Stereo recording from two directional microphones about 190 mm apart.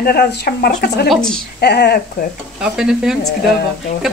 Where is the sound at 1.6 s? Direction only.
55° left (ahead or behind).